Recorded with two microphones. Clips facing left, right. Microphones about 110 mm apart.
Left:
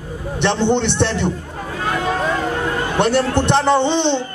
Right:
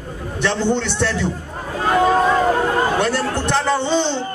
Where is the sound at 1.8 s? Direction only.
40° right (ahead or behind).